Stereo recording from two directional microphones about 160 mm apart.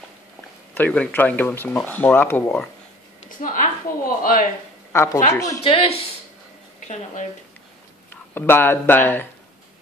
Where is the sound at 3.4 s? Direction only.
55° left (ahead or behind).